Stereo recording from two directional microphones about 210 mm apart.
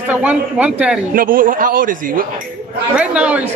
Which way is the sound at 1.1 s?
40° right (ahead or behind).